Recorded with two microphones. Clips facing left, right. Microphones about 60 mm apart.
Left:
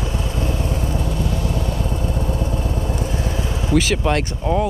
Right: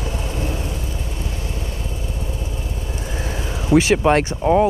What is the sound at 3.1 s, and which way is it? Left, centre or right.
Vehicle, right.